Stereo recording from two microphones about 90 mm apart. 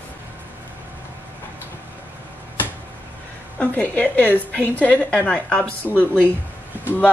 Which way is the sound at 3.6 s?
15° left (ahead or behind).